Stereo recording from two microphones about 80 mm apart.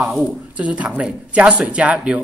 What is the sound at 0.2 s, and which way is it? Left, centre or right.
Speech, centre.